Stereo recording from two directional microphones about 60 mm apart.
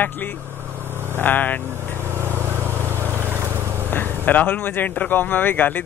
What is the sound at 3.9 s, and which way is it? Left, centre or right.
Speech, left.